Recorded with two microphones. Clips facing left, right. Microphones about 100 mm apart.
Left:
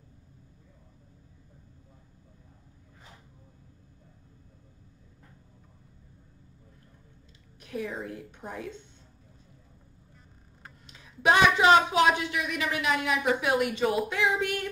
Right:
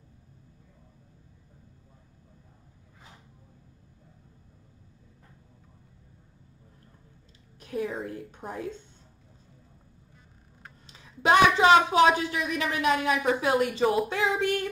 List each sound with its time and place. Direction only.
7.6 s a woman's voice: 40° right (ahead or behind)
10.9 s a sound: 30° right (ahead or behind)
12.2 s speech: 40° right (ahead or behind)